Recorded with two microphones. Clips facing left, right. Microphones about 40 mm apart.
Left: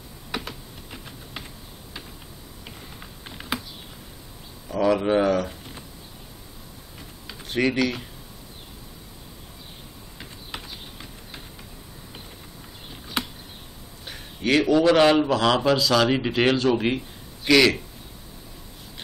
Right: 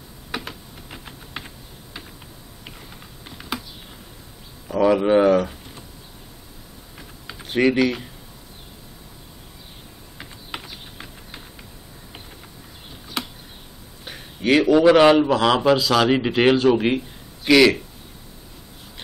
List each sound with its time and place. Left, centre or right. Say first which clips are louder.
0.3 s typing: right 1 dB; centre
3.3 s typing: left 1 dB; centre
4.6 s speech: right 4 dB; centre
7.2 s typing: right 5 dB; centre
10.1 s typing: right 3 dB; centre
13.2 s a sound: left 1 dB; centre
14.0 s a man's voice: right 4 dB; centre